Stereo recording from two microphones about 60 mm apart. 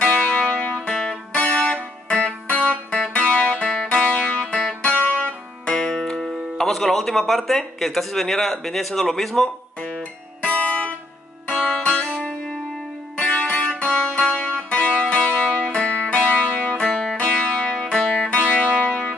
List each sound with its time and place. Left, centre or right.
0.0 s music: centre
5.7 s speech: centre
9.8 s music: centre